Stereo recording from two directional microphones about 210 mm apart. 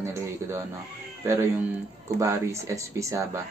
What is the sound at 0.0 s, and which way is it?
Speech, 10° right (ahead or behind).